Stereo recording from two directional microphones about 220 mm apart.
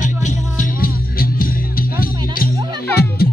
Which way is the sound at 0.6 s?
40° left (ahead or behind).